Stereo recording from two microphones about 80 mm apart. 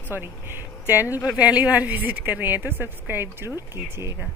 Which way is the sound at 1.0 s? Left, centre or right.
Left.